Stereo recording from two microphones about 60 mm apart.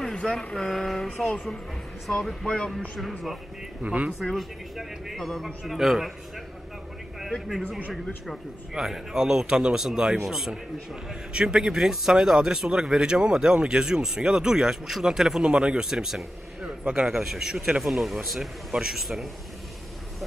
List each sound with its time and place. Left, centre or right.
0.0 s speech: centre
1.2 s speech: left
2.0 s a man's voice: centre
2.4 s speech: centre
3.0 s a man's voice: centre
3.8 s speech: right
4.2 s a man's voice: centre
8.7 s a man's voice: centre